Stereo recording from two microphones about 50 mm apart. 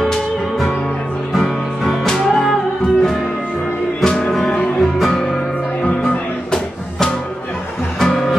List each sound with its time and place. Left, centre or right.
0.0 s music: centre
4.0 s music: centre
4.7 s music: centre